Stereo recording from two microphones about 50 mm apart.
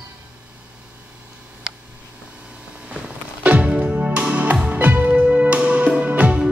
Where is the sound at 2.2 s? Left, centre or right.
Right.